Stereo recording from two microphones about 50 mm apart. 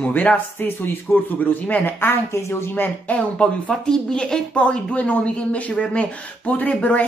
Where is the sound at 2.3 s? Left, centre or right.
Left.